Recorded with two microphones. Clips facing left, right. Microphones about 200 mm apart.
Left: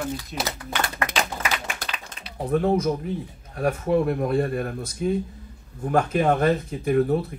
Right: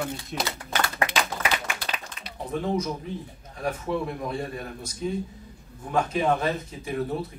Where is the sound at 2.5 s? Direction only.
55° left (ahead or behind).